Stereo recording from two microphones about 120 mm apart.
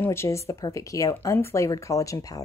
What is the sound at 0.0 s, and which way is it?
A woman's voice, 20° left (ahead or behind).